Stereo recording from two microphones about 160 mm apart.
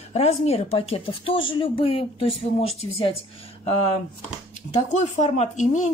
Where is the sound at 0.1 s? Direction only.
40° left (ahead or behind).